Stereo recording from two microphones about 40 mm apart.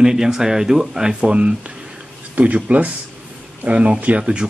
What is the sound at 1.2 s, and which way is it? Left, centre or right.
A man's voice, right.